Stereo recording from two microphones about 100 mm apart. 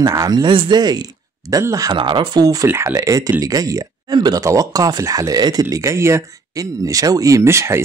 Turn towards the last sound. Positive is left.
turn(degrees=-25)  # may be behind; listen again after turning